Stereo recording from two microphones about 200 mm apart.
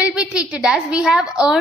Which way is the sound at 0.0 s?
5° right (ahead or behind).